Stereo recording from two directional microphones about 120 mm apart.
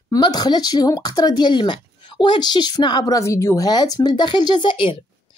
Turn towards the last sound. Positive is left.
turn(degrees=45)  # may be behind; listen again after turning